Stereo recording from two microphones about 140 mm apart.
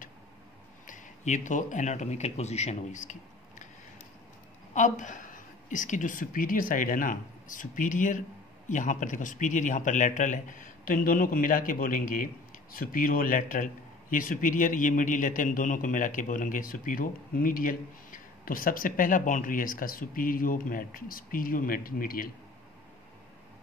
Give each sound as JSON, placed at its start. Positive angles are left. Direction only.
{"t": 0.8, "sound": "speech", "side_deg": 65}
{"t": 4.7, "sound": "a man's voice", "side_deg": 65}